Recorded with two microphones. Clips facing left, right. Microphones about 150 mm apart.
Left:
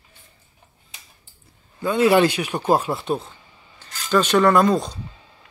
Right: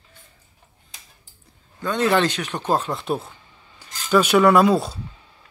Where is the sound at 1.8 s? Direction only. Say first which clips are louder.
Left 4 dB; 10° left (ahead or behind).